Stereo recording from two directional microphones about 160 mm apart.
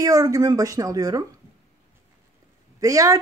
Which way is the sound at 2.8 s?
20° right (ahead or behind).